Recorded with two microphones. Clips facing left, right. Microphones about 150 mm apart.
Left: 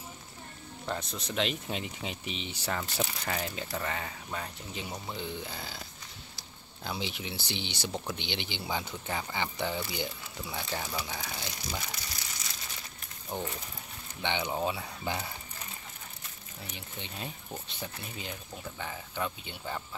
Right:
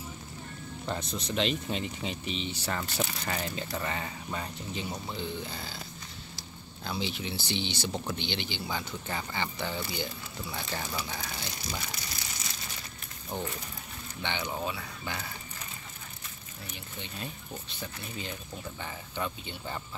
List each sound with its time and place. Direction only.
0.8 s speech: 5° left (ahead or behind)
6.8 s speech: 15° left (ahead or behind)
9.0 s speech: 10° left (ahead or behind)
13.3 s speech: 15° left (ahead or behind)
16.7 s speech: 20° left (ahead or behind)
18.8 s speech: 5° left (ahead or behind)